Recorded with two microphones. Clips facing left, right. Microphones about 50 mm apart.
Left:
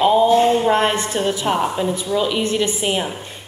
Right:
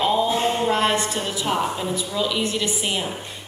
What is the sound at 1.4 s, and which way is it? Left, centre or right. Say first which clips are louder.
A woman's voice: left 4 dB; centre.